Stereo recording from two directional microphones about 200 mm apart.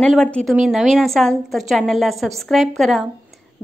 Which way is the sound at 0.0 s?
5° left (ahead or behind).